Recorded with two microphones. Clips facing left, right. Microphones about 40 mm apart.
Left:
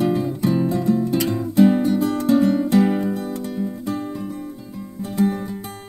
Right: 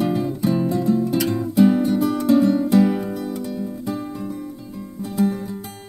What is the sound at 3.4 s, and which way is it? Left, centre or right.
Music, centre.